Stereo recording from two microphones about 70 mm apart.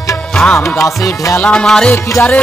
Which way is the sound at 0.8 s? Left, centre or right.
Left.